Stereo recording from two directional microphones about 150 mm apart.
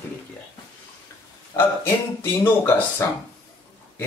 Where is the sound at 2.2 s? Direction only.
15° left (ahead or behind).